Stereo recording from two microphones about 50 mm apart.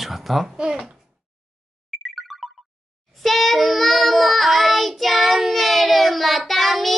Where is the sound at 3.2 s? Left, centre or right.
Centre.